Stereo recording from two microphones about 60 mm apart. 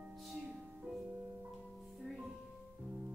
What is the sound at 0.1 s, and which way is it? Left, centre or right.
Music, centre.